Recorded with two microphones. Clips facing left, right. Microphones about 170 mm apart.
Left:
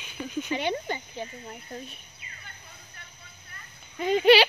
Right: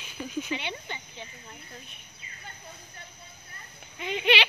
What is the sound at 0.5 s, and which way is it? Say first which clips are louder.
Speech: left 6 dB; 45° left (ahead or behind).